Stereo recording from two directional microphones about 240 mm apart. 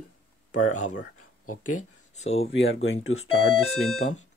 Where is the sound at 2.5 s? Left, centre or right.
Left.